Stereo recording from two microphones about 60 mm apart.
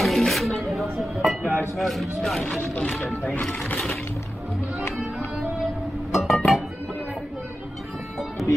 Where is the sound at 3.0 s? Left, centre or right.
Centre.